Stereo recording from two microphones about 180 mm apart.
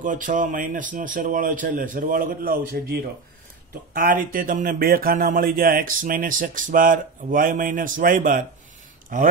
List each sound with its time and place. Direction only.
0.0 s speech: 45° right (ahead or behind)